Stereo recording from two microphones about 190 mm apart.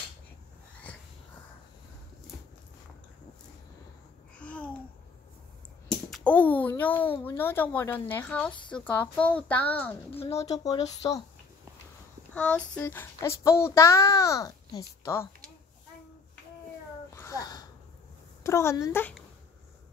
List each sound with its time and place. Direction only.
4.4 s babbling: 5° left (ahead or behind)
5.9 s a child's voice: centre (ahead or behind)
10.1 s speech: 35° left (ahead or behind)
12.4 s a child's voice: 5° left (ahead or behind)
17.1 s a sound: 15° left (ahead or behind)
18.4 s a child's voice: 15° left (ahead or behind)